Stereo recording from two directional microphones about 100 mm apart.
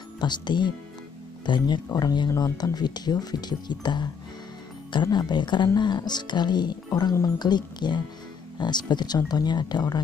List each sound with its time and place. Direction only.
0.2 s speech: 50° left (ahead or behind)